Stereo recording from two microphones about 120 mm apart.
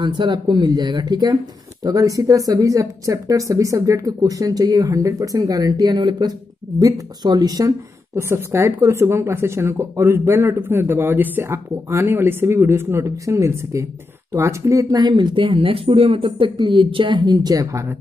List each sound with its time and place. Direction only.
0.0 s speech: 40° right (ahead or behind)